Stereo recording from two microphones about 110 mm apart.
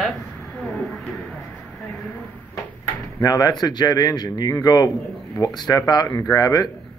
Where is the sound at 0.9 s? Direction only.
Centre (ahead or behind).